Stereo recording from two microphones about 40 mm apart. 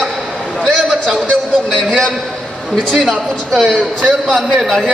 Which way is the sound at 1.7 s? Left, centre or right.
Centre.